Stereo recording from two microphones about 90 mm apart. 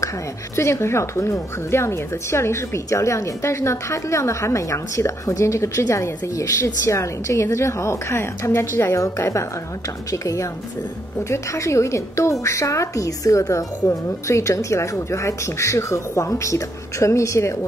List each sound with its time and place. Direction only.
0.6 s speech: 30° left (ahead or behind)